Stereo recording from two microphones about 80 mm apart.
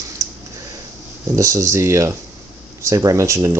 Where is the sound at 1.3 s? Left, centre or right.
Right.